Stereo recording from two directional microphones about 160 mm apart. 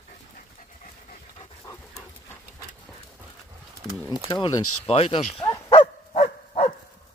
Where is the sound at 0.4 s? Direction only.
55° left (ahead or behind).